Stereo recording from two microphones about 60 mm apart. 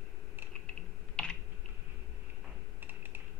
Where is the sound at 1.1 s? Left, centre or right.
Centre.